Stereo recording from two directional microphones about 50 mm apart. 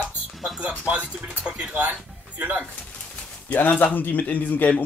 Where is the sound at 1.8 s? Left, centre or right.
Right.